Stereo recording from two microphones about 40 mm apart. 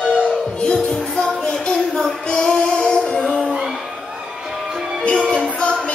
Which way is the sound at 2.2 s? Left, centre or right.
Centre.